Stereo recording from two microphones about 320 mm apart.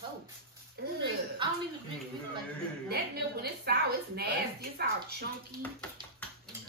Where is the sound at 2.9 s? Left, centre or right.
Right.